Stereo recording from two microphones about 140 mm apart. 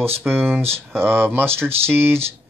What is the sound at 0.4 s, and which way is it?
Speech, 15° right (ahead or behind).